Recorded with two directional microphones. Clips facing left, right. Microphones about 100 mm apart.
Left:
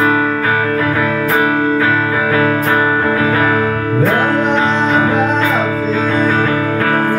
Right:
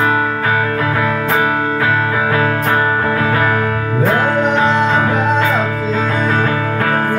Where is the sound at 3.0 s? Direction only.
25° left (ahead or behind).